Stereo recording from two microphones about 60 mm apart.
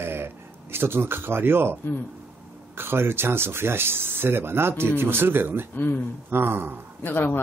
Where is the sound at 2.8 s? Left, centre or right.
Right.